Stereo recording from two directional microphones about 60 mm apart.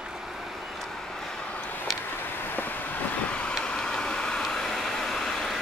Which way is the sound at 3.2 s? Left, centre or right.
Centre.